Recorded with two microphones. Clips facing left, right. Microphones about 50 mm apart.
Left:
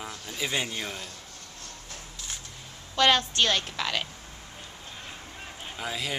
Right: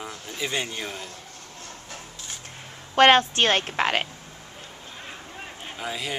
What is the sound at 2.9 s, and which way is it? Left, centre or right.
A woman's voice, right.